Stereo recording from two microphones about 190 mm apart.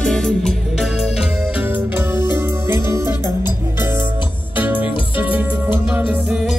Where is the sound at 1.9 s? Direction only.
10° right (ahead or behind).